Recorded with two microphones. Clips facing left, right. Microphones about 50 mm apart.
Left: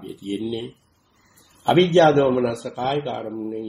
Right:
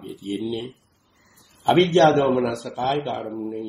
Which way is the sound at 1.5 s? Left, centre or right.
Centre.